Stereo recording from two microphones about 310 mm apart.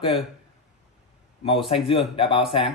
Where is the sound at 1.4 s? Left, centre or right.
Centre.